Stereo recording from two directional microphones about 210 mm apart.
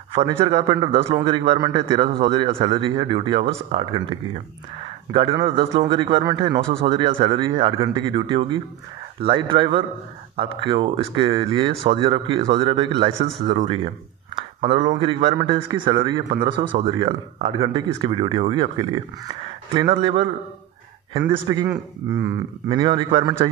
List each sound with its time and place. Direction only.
0.1 s speech: 30° right (ahead or behind)
14.6 s speech: 20° right (ahead or behind)
21.3 s speech: 20° right (ahead or behind)